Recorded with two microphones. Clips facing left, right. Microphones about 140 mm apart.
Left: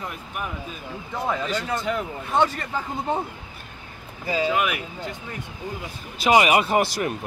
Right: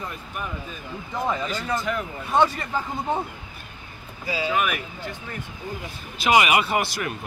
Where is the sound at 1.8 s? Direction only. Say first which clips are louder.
Left 1 dB; 30° left (ahead or behind).